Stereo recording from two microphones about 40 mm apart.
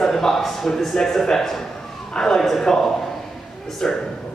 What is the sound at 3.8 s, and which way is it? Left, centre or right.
Speech, centre.